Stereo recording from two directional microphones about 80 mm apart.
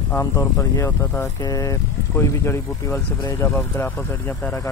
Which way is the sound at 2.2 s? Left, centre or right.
Left.